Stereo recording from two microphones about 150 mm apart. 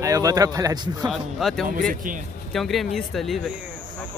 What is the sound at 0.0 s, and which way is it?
A man's voice, 25° right (ahead or behind).